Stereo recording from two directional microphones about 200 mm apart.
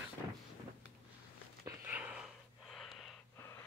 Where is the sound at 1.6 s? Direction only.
5° right (ahead or behind).